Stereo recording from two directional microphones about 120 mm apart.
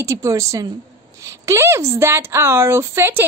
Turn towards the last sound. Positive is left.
turn(degrees=-20)  # may be behind; listen again after turning